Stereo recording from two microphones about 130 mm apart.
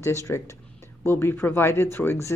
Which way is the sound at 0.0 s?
20° left (ahead or behind).